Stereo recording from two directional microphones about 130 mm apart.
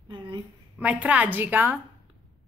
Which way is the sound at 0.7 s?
10° right (ahead or behind).